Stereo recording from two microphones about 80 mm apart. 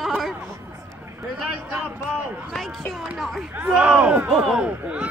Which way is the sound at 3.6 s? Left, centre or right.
Centre.